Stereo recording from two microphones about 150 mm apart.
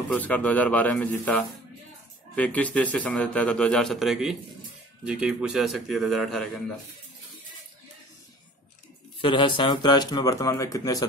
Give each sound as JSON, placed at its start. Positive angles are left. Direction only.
{"t": 0.1, "sound": "a man's voice", "side_deg": 10}
{"t": 9.2, "sound": "speech", "side_deg": 35}